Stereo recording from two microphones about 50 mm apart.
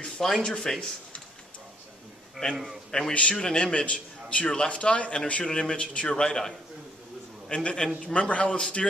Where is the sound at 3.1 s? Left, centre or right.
Left.